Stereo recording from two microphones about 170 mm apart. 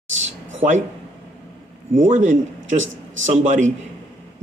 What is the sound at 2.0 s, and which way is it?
A man's voice, 45° right (ahead or behind).